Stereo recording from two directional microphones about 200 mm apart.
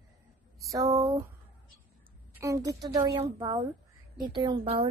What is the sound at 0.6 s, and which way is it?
Speech, 15° right (ahead or behind).